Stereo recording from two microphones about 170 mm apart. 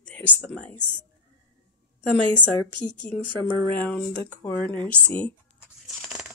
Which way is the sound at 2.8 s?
45° left (ahead or behind).